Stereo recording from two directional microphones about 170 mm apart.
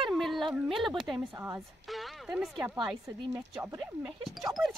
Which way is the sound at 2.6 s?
20° right (ahead or behind).